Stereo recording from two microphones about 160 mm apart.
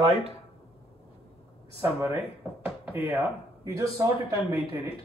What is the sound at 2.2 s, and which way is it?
Speech, 10° right (ahead or behind).